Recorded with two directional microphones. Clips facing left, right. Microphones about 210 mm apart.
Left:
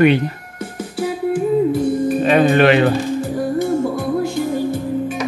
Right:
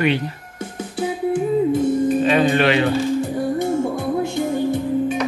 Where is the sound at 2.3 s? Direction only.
55° left (ahead or behind).